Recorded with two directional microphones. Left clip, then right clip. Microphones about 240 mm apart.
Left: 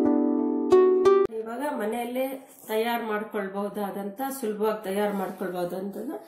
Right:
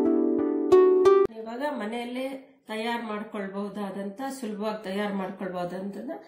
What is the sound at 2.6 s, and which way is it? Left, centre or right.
Speech, right.